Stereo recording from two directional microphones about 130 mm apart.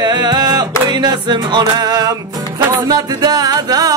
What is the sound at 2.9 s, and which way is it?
Music, 30° right (ahead or behind).